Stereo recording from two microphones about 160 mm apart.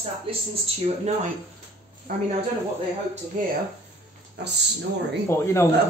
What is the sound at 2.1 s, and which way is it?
Speech, 60° right (ahead or behind).